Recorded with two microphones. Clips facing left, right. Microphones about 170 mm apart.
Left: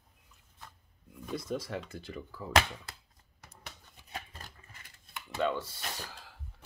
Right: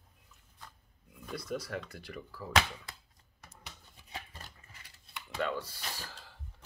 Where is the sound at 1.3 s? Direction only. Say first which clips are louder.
Left 2 dB; 25° left (ahead or behind).